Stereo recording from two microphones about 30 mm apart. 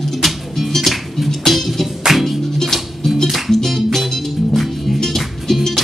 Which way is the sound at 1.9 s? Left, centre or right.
Centre.